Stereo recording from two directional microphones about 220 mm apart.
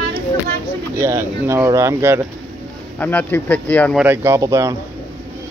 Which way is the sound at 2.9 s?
10° left (ahead or behind).